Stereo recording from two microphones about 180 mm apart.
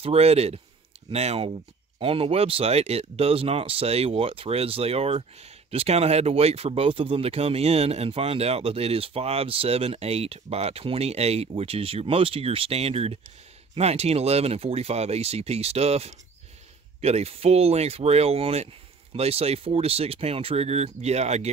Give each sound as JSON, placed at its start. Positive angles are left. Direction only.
{"t": 0.0, "sound": "speech", "side_deg": -35}